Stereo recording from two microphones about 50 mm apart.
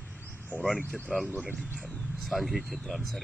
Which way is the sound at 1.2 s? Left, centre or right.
Centre.